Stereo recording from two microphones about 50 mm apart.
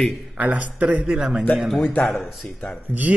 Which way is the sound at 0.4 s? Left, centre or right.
Right.